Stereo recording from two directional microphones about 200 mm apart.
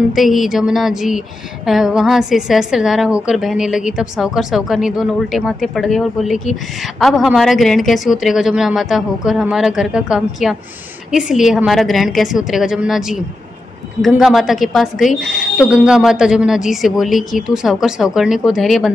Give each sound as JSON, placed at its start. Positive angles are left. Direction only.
{"t": 0.1, "sound": "a woman's voice", "side_deg": 0}